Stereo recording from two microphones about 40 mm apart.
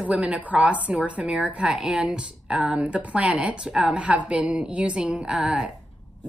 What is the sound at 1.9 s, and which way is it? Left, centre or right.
A woman's voice, right.